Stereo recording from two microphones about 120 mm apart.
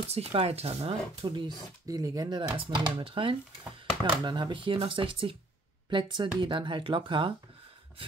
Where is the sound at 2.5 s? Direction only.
45° right (ahead or behind).